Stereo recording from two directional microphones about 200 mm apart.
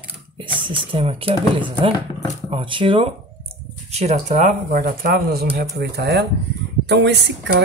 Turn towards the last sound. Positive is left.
turn(degrees=-60)  # may be behind; listen again after turning